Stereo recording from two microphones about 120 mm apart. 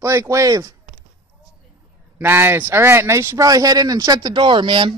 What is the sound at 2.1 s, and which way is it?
Speech, 20° right (ahead or behind).